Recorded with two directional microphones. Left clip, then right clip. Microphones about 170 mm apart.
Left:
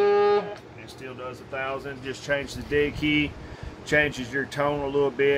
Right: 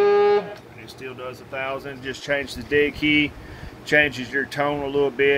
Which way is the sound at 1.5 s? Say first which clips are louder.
Right 2 dB; 15° right (ahead or behind).